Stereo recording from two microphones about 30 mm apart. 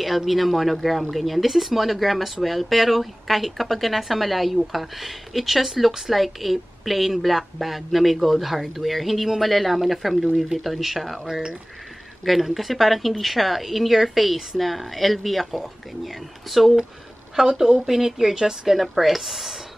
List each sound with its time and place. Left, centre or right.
0.3 s speech: centre
12.5 s speech: centre
17.5 s speech: centre
18.8 s speech: centre